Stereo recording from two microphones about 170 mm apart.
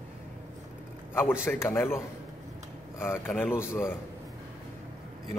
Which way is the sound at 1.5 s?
10° left (ahead or behind).